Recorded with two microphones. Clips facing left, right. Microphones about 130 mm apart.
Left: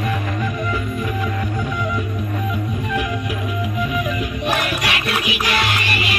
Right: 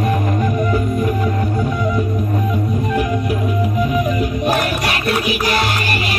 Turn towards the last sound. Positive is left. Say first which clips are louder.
# right 2 dB
turn(degrees=-40)  # may be behind; listen again after turning